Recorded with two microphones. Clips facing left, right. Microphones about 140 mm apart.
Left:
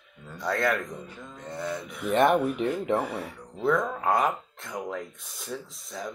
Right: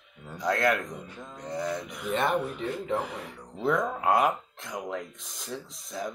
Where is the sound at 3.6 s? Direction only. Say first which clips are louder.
Left 1 dB; 5° right (ahead or behind).